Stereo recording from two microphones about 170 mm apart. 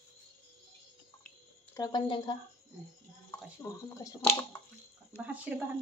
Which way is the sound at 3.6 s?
20° left (ahead or behind).